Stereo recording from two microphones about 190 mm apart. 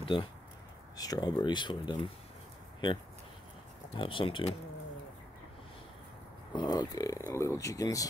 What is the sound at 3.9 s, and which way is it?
Speech, 25° left (ahead or behind).